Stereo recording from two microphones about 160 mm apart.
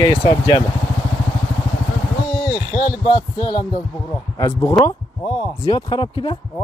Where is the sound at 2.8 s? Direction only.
25° left (ahead or behind).